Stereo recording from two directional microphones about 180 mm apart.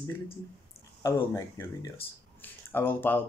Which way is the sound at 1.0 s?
15° left (ahead or behind).